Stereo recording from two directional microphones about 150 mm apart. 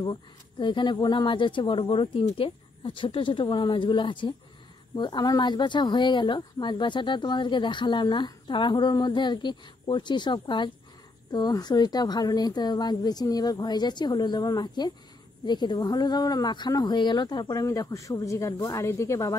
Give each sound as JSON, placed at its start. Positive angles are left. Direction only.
{"t": 0.0, "sound": "speech", "side_deg": 30}